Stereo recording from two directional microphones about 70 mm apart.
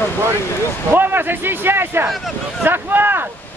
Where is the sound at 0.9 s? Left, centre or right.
Right.